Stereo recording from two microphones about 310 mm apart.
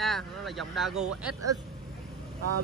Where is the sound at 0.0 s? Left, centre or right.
Centre.